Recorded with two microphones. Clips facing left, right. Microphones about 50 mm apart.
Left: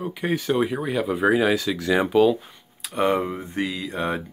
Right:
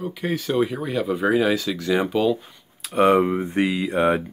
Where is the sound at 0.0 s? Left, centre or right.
Centre.